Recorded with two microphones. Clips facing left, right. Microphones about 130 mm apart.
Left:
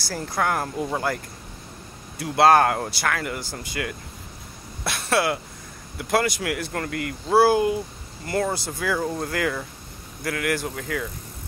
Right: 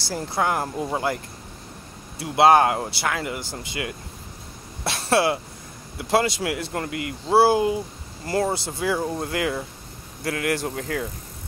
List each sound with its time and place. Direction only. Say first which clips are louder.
0.0 s speech: right 1 dB; 25° right (ahead or behind)
4.8 s throat clearing: right 2 dB; 30° right (ahead or behind)
5.9 s speech: right 1 dB; 25° right (ahead or behind)